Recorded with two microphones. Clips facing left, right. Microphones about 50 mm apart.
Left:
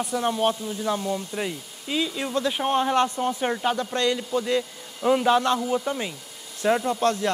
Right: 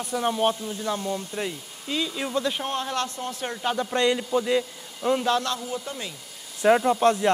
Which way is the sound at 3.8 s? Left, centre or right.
Centre.